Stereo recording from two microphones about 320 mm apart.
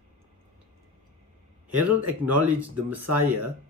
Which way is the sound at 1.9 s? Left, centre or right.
Centre.